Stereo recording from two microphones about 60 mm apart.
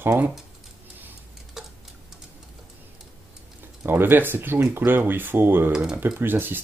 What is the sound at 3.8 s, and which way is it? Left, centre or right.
Speech, right.